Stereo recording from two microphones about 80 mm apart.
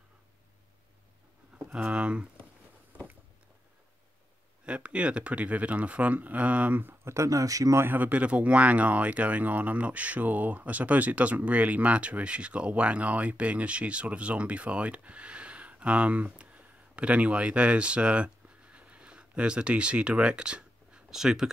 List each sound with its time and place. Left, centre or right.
1.7 s speech: centre
4.6 s speech: centre
7.2 s speech: right
7.8 s speech: right; by 21.5 s centre